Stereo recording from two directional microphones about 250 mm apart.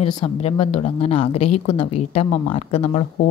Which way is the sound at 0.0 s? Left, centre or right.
Left.